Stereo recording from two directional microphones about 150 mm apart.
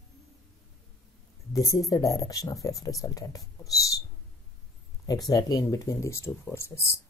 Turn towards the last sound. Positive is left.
turn(degrees=15)  # may be behind; listen again after turning